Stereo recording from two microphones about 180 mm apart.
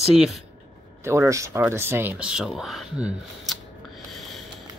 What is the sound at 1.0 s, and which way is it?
Speech, 15° right (ahead or behind).